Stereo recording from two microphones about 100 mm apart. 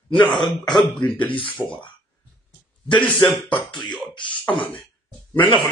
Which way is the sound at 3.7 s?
50° left (ahead or behind).